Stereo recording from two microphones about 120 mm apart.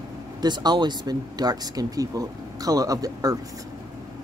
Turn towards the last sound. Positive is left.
turn(degrees=-30)  # may be behind; listen again after turning